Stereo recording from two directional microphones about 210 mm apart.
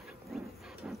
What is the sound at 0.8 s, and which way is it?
Hiss, 5° right (ahead or behind).